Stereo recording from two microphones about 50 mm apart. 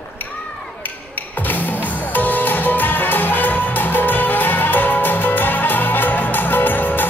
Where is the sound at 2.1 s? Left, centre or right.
Left.